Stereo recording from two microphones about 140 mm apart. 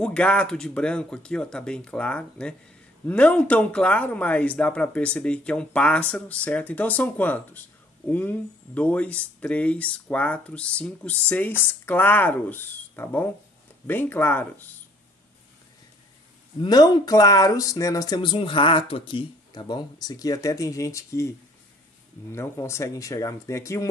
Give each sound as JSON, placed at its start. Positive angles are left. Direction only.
{"t": 0.0, "sound": "speech", "side_deg": 10}
{"t": 16.6, "sound": "speech", "side_deg": 30}
{"t": 22.3, "sound": "speech", "side_deg": 20}